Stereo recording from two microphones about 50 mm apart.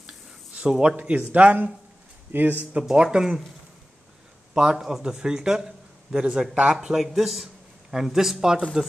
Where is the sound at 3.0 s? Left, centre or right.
Centre.